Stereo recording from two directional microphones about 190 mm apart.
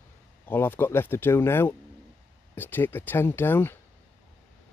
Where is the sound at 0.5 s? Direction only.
10° left (ahead or behind).